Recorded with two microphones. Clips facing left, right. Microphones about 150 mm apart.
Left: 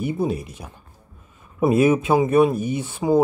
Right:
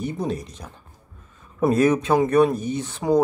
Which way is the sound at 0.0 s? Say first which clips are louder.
Left 3 dB; 10° left (ahead or behind).